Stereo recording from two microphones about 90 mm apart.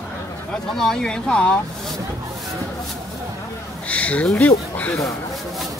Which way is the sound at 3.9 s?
15° left (ahead or behind).